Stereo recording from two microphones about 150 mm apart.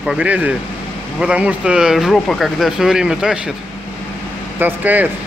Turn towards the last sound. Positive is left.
turn(degrees=-10)  # may be behind; listen again after turning